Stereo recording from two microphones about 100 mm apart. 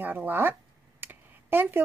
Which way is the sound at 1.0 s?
20° right (ahead or behind).